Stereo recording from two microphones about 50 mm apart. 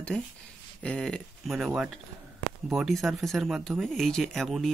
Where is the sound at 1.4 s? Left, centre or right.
Centre.